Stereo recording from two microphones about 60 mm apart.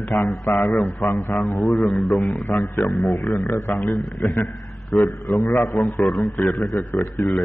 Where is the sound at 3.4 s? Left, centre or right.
Left.